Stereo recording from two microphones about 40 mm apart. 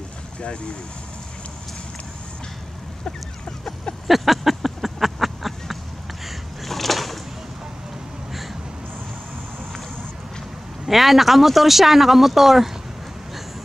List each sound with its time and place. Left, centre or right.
0.4 s speech: left
4.1 s a sound: centre
10.9 s speech: centre